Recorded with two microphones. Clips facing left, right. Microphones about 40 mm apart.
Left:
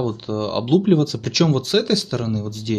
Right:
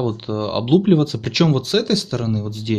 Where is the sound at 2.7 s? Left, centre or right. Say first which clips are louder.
Right 1 dB; right.